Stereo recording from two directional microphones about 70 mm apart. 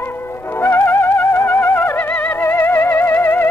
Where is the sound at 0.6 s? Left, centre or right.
Left.